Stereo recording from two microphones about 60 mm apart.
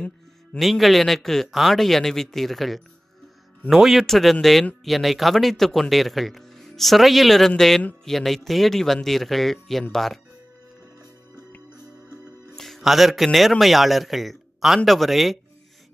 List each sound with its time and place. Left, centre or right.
0.6 s speech: centre
11.7 s music: left
12.5 s a man's voice: centre